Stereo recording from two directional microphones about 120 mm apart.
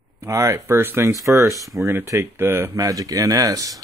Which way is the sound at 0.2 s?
25° right (ahead or behind).